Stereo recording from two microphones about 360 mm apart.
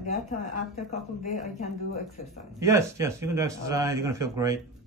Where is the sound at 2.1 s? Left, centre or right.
Centre.